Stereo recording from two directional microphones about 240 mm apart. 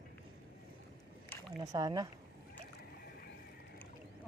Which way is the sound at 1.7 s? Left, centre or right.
Centre.